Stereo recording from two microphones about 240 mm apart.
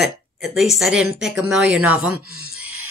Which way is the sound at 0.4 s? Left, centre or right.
Centre.